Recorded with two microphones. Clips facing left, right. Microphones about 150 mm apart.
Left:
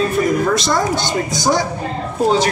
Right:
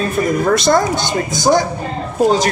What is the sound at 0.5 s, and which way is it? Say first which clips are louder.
Speech: right 3 dB; 50° right (ahead or behind).